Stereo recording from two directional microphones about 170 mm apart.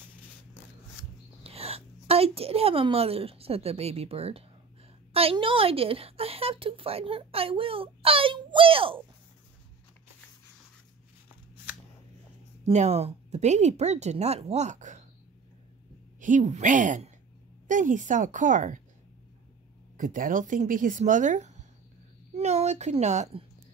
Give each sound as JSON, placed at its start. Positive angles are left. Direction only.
{"t": 1.4, "sound": "a woman's voice", "side_deg": -35}
{"t": 12.6, "sound": "speech", "side_deg": -40}
{"t": 16.2, "sound": "speech", "side_deg": -45}
{"t": 20.0, "sound": "speech", "side_deg": -50}